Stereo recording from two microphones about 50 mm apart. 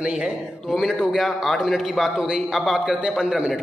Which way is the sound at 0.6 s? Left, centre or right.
Centre.